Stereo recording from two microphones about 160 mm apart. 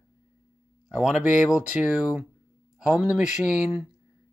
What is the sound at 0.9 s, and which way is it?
Speech, 5° right (ahead or behind).